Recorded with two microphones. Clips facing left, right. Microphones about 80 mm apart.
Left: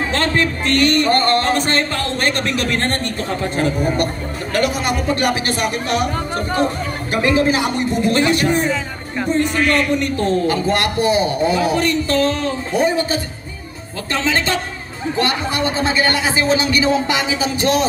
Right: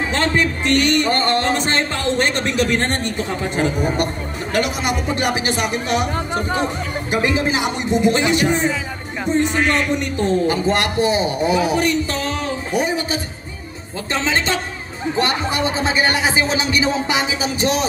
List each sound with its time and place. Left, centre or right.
0.1 s music: centre